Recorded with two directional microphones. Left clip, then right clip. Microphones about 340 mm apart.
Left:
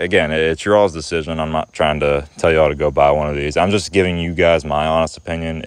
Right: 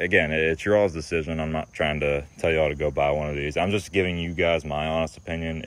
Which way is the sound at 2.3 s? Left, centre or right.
Left.